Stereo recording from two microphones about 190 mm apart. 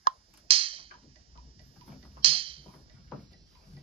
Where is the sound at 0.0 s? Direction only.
30° right (ahead or behind).